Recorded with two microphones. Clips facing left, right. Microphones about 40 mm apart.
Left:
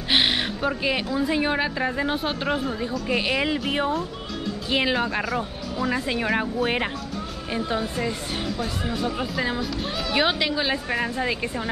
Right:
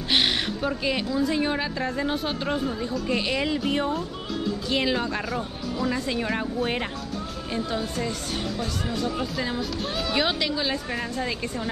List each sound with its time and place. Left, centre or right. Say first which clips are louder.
0.1 s a woman's voice: left 2 dB; centre